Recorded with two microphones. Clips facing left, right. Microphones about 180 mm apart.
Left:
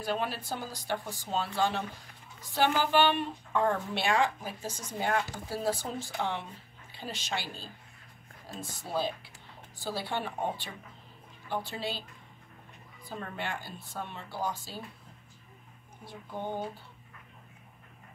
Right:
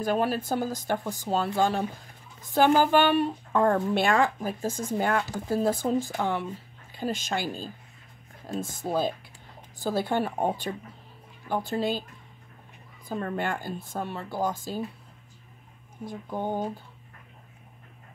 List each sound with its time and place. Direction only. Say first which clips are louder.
0.0 s speech: right 7 dB; 45° right (ahead or behind)
13.1 s speech: right 8 dB; 50° right (ahead or behind)
16.1 s speech: right 6 dB; 45° right (ahead or behind)